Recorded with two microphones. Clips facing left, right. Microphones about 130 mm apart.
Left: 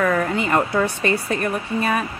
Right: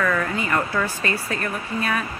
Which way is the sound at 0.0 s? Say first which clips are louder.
Left 3 dB; 30° left (ahead or behind).